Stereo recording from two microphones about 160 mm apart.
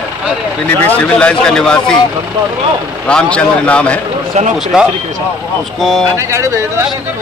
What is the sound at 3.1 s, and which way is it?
Speech, 5° left (ahead or behind).